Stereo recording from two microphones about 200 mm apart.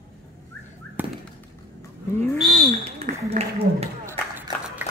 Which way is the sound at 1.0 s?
10° right (ahead or behind).